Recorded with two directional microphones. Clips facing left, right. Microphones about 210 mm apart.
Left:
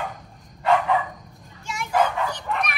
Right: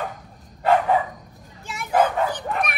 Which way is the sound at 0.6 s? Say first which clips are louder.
Right 2 dB; 50° right (ahead or behind).